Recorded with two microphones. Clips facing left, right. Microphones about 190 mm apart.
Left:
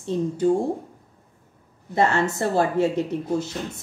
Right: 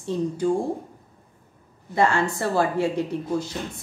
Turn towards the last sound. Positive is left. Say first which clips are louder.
# left 1 dB
turn(degrees=25)  # may be behind; listen again after turning